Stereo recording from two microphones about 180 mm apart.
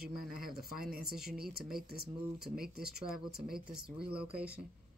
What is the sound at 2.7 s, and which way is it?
Speech, 60° right (ahead or behind).